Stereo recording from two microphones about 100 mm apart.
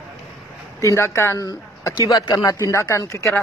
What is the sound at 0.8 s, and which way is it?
Speech, 30° left (ahead or behind).